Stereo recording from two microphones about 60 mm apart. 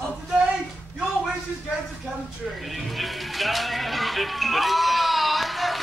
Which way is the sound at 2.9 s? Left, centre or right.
Centre.